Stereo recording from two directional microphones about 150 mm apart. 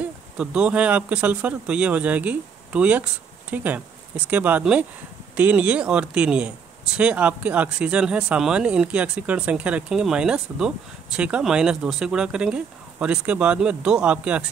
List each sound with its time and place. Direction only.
0.4 s speech: 5° right (ahead or behind)